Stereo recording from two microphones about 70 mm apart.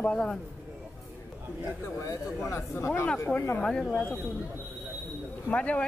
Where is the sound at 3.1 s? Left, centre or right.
Left.